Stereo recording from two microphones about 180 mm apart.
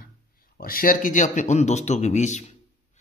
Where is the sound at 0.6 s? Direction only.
55° left (ahead or behind).